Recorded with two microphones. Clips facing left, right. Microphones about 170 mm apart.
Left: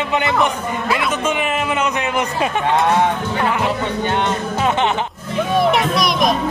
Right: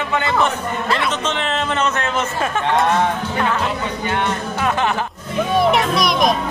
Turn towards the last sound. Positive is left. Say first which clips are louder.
# even
turn(degrees=0)  # may be behind; listen again after turning